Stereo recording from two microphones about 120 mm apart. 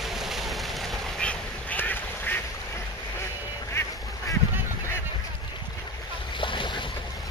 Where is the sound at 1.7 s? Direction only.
15° left (ahead or behind).